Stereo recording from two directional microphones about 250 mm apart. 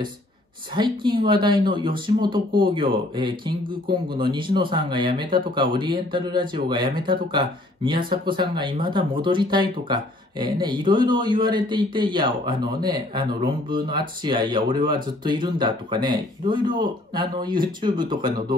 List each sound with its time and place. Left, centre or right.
0.7 s a man's voice: centre